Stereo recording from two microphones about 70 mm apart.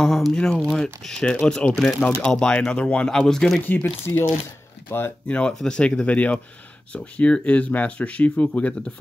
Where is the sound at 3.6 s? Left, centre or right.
Left.